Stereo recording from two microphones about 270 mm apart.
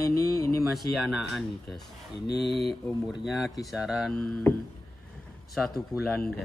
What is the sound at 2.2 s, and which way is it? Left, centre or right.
Speech, left.